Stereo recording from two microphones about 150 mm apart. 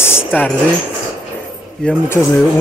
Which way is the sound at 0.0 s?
15° left (ahead or behind).